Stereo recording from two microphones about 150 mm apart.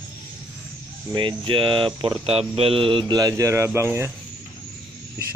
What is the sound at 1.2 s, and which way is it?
Speech, 35° right (ahead or behind).